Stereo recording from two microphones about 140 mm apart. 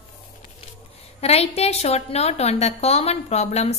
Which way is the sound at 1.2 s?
45° left (ahead or behind).